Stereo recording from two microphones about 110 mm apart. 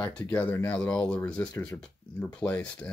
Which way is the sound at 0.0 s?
15° left (ahead or behind).